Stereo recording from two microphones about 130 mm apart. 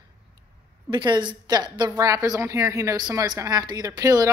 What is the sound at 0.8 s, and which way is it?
A woman's voice, 35° right (ahead or behind).